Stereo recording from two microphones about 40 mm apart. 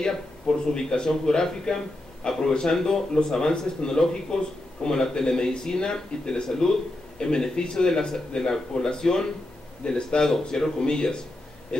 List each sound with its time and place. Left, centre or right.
0.7 s speech: centre